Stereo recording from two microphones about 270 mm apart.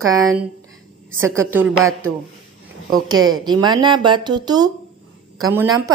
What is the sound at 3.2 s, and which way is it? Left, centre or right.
Speech, centre.